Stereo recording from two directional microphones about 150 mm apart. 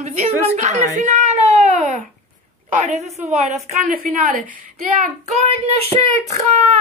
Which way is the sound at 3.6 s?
60° right (ahead or behind).